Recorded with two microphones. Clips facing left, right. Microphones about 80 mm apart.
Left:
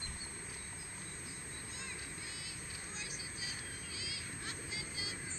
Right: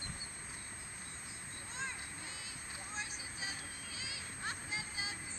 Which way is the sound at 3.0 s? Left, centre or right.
Right.